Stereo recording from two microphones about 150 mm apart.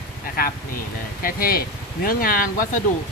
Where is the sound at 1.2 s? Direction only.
80° left.